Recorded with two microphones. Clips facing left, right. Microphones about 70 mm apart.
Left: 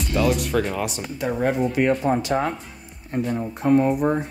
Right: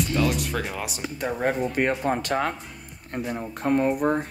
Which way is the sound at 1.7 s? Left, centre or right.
Right.